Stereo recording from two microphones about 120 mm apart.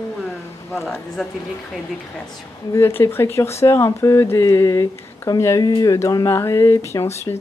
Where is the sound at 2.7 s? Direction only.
20° left (ahead or behind).